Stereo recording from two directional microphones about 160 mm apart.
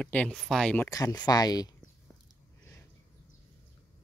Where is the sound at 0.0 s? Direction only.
5° left (ahead or behind).